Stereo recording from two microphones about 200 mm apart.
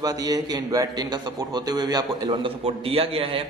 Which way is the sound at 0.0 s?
20° right (ahead or behind).